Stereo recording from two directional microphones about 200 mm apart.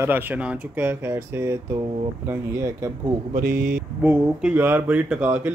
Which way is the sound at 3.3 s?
45° right (ahead or behind).